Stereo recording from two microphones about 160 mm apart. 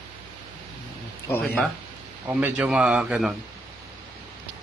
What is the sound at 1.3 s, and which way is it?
Speech, 10° left (ahead or behind).